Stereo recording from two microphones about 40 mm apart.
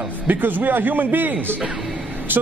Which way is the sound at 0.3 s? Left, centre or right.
Right.